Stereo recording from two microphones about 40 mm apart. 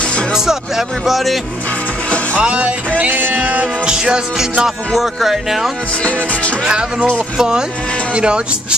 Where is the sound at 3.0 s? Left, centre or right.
Right.